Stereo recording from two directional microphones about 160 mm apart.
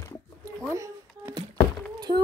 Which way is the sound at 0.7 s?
20° right (ahead or behind).